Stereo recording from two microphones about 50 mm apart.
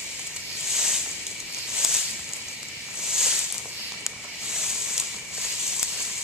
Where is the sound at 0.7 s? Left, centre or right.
Centre.